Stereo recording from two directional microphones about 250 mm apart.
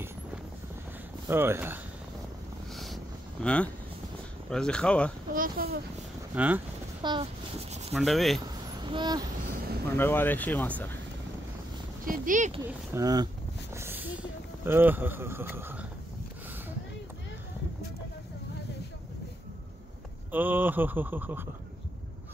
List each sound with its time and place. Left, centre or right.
1.2 s speech: centre
2.7 s wind noise: centre
3.4 s speech: centre
5.3 s speech: right
6.3 s speech: centre
7.0 s speech: centre
7.9 s speech: centre
8.5 s a sound: centre
9.9 s speech: centre
12.0 s speech: right
12.6 s speech: centre
13.7 s a sound: centre
20.2 s speech: centre